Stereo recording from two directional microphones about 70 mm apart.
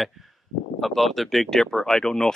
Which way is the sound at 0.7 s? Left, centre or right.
Centre.